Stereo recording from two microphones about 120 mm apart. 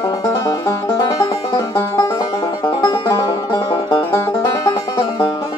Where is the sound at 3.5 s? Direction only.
40° left (ahead or behind).